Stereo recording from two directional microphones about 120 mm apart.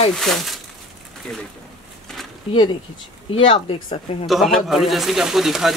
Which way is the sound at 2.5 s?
45° left (ahead or behind).